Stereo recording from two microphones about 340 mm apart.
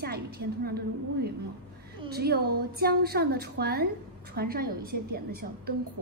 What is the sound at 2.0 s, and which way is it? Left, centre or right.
A woman's voice, right.